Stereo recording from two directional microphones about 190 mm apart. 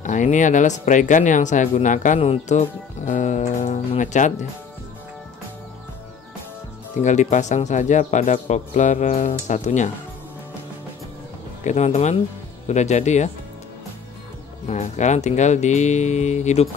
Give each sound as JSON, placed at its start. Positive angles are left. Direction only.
{"t": 0.0, "sound": "speech", "side_deg": 40}
{"t": 7.0, "sound": "speech", "side_deg": 40}
{"t": 11.6, "sound": "speech", "side_deg": 35}
{"t": 14.7, "sound": "speech", "side_deg": 40}